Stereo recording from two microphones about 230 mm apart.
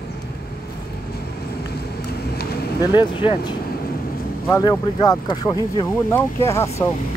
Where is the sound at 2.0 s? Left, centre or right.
Left.